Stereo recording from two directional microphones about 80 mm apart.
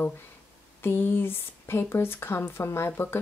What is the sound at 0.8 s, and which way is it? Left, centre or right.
Speech, left.